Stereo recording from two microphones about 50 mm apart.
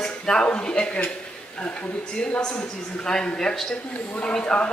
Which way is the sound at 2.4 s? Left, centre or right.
Centre.